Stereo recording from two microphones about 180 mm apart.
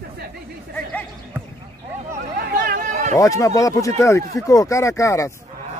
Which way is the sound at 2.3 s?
50° right (ahead or behind).